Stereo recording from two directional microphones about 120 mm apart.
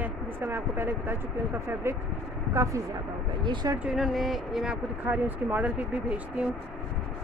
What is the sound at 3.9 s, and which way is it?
Speech, centre (ahead or behind).